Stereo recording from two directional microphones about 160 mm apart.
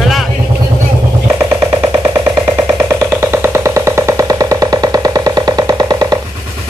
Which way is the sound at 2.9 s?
15° right (ahead or behind).